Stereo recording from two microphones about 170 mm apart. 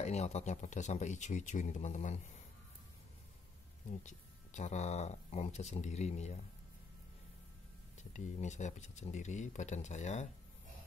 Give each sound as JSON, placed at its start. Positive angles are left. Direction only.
{"t": 0.0, "sound": "speech", "side_deg": 40}
{"t": 4.0, "sound": "speech", "side_deg": 45}
{"t": 8.0, "sound": "speech", "side_deg": 45}